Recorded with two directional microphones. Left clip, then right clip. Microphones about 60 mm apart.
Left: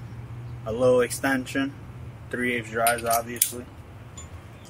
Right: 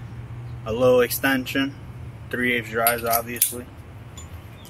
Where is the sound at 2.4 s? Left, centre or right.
Centre.